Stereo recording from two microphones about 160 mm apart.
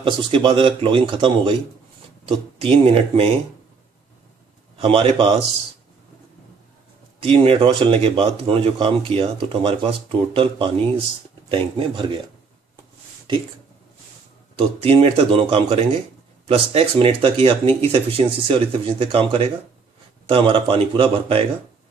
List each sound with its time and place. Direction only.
0.0 s speech: 30° right (ahead or behind)
4.7 s speech: 35° right (ahead or behind)
7.2 s speech: 35° right (ahead or behind)
14.5 s speech: 35° right (ahead or behind)